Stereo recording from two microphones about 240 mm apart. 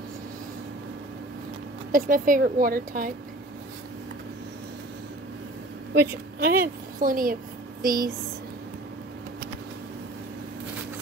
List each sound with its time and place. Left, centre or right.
1.9 s speech: right
6.4 s a woman's voice: right